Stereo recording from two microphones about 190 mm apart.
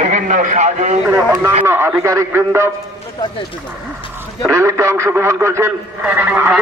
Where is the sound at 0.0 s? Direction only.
40° right (ahead or behind).